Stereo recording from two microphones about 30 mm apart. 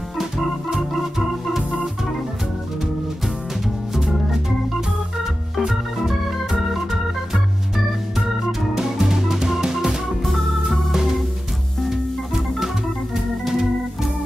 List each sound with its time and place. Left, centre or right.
3.9 s organ: centre
8.7 s music: centre
10.2 s organ: centre
12.5 s organ: centre